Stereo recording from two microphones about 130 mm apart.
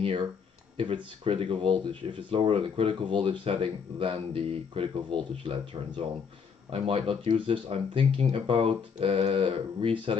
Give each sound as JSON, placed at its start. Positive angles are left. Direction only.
{"t": 0.7, "sound": "speech", "side_deg": -40}